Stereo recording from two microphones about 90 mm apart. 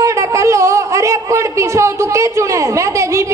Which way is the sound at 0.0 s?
35° right (ahead or behind).